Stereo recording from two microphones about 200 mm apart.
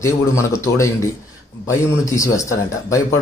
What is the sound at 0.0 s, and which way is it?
Speech, 15° left (ahead or behind).